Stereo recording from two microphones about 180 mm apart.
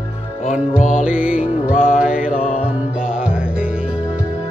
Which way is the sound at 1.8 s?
5° right (ahead or behind).